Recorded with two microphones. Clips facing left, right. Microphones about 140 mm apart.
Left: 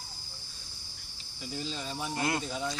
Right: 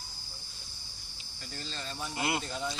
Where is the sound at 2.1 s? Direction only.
10° right (ahead or behind).